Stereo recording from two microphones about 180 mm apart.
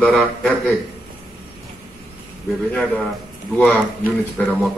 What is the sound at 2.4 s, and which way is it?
A man's voice, 10° left (ahead or behind).